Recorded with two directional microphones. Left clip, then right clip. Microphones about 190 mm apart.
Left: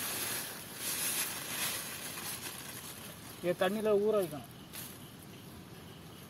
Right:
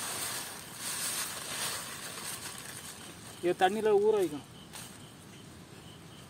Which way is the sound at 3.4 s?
70° right (ahead or behind).